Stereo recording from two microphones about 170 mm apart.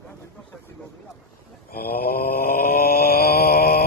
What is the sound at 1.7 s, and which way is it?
Mantra, 60° left (ahead or behind).